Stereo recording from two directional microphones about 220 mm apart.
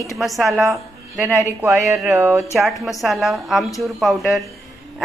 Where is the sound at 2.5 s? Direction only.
Centre (ahead or behind).